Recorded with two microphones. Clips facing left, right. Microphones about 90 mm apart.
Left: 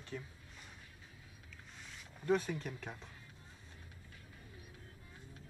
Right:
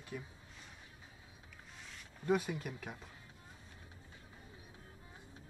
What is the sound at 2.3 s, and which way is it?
Speech, 10° right (ahead or behind).